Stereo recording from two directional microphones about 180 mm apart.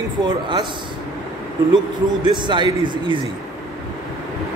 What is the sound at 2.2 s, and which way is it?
Speech, 25° right (ahead or behind).